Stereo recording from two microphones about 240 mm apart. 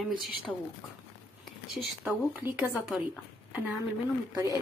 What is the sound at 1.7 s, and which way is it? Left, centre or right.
Speech, centre.